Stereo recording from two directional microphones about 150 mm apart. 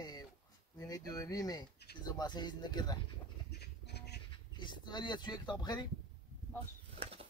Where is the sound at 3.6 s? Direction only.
90° left.